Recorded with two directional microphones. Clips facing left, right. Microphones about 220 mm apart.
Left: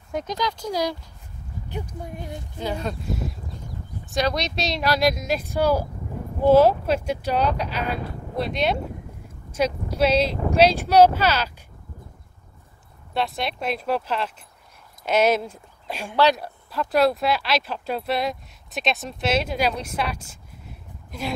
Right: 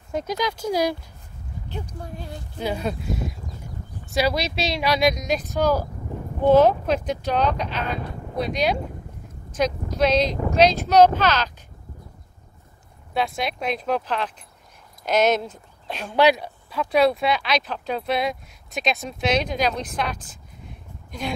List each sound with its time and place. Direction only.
0.1 s speech: 5° right (ahead or behind)
1.7 s speech: 20° left (ahead or behind)
2.6 s speech: 10° right (ahead or behind)
4.1 s speech: 5° right (ahead or behind)
13.1 s speech: centre (ahead or behind)